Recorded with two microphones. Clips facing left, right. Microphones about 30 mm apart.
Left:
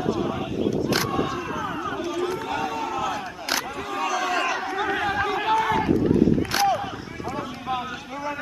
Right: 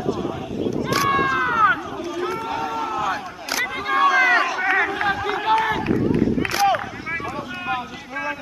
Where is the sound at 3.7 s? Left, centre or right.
Right.